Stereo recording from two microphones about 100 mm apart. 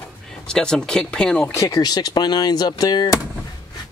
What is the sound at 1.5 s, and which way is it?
Speech, 35° left (ahead or behind).